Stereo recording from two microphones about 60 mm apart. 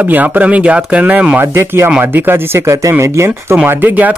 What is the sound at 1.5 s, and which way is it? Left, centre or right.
Speech, right.